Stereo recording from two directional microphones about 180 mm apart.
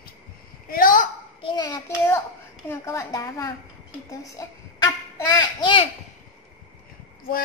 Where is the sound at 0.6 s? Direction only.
50° left (ahead or behind).